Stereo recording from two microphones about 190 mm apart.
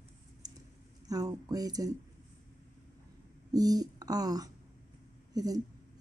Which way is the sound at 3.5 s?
20° right (ahead or behind).